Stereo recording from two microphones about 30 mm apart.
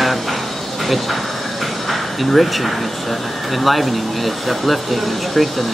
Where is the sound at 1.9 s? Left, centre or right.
Centre.